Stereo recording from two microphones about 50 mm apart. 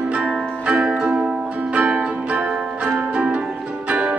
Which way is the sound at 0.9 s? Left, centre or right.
Centre.